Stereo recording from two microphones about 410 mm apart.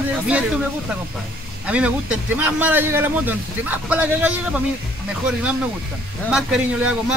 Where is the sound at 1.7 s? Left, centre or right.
Centre.